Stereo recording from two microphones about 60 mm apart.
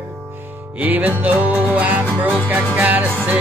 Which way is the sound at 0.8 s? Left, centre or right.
Right.